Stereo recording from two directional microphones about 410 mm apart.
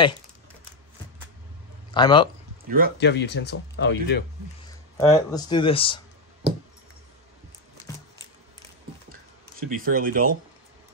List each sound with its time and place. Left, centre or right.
1.9 s a man's voice: centre
2.6 s speech: right
3.0 s speech: left
4.6 s speech: centre
9.6 s speech: right